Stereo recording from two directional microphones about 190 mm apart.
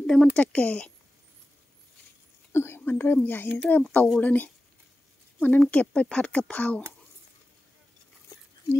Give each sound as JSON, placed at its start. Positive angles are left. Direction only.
{"t": 0.0, "sound": "speech", "side_deg": 5}
{"t": 2.5, "sound": "speech", "side_deg": 10}